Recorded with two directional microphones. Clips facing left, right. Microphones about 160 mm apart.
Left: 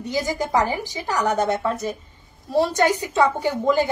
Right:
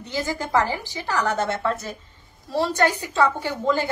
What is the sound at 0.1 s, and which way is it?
A woman's voice, 15° left (ahead or behind).